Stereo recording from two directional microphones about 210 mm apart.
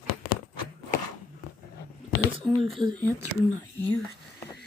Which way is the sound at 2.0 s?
50° left (ahead or behind).